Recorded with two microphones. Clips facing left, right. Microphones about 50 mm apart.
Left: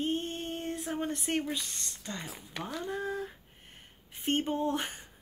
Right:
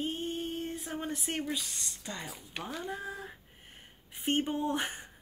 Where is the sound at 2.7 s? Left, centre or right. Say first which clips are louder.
Left 4 dB; centre.